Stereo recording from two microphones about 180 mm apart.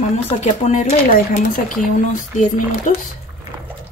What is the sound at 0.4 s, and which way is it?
Speech, 40° left (ahead or behind).